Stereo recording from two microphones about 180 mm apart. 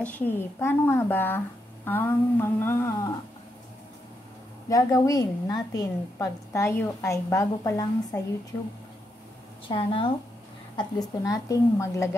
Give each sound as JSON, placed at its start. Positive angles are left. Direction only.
{"t": 0.0, "sound": "a woman's voice", "side_deg": 10}
{"t": 4.6, "sound": "a woman's voice", "side_deg": 20}
{"t": 9.7, "sound": "a woman's voice", "side_deg": 30}